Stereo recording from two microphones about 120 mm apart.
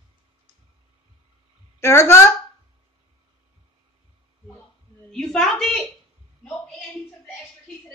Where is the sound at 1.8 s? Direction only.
25° left (ahead or behind).